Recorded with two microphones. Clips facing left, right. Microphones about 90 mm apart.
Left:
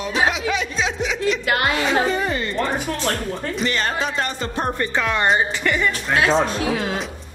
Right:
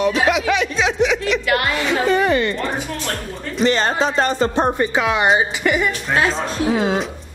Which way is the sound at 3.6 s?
30° right (ahead or behind).